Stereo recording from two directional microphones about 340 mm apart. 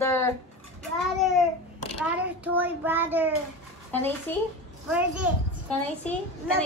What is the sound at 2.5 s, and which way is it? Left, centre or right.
Child singing, centre.